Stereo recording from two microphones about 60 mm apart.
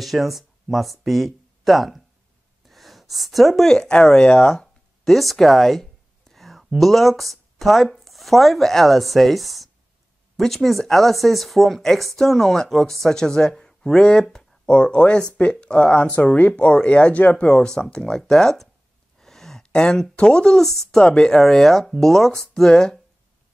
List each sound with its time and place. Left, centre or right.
0.0 s speech: centre
2.7 s a sound: centre
6.8 s speech: centre
19.1 s a sound: centre
19.6 s speech: centre
21.0 s speech: centre